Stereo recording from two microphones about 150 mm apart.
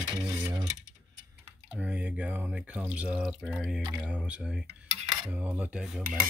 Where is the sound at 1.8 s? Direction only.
10° right (ahead or behind).